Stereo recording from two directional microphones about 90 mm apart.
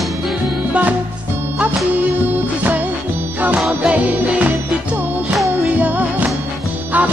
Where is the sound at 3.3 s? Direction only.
20° right (ahead or behind).